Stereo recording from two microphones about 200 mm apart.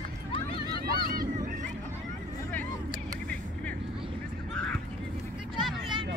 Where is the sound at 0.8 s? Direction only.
50° right (ahead or behind).